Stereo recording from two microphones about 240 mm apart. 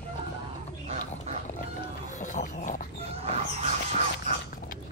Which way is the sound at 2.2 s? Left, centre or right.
Left.